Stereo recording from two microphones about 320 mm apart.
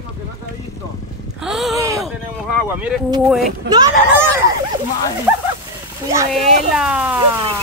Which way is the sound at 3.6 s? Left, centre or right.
Centre.